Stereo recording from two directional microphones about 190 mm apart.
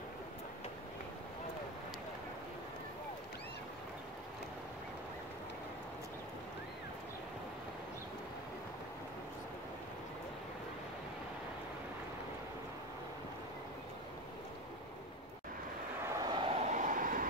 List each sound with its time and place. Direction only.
16.1 s vehicle: 20° right (ahead or behind); by 17.3 s 45° right (ahead or behind)